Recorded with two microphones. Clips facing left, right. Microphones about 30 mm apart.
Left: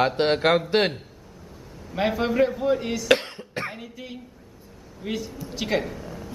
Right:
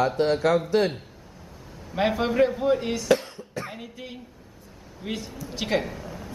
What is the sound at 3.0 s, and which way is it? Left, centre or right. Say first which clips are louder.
Cough: left 2 dB; left.